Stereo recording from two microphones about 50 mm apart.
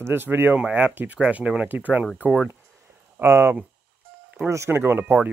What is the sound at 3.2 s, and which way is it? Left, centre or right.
Speech, right.